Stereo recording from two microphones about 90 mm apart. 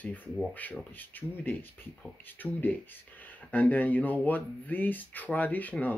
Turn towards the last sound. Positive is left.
turn(degrees=20)  # may be behind; listen again after turning